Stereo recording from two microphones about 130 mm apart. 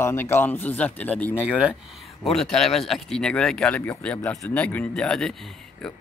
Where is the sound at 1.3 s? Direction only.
5° right (ahead or behind).